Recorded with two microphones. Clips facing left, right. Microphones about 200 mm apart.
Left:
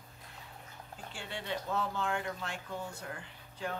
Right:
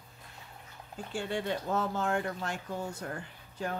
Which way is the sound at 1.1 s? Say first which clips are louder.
Right 7 dB; 45° right (ahead or behind).